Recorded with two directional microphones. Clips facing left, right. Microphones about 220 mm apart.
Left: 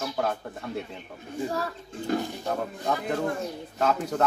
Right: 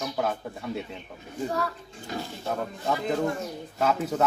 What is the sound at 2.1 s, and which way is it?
Speech, 50° left (ahead or behind).